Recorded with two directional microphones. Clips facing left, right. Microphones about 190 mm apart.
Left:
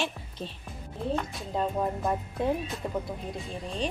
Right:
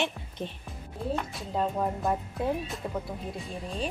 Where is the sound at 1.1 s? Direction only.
Centre (ahead or behind).